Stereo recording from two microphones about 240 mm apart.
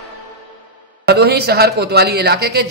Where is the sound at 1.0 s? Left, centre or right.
Right.